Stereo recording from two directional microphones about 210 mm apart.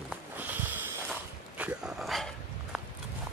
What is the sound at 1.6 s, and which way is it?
Speech, 5° right (ahead or behind).